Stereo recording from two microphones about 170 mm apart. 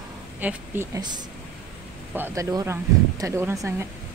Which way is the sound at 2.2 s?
15° right (ahead or behind).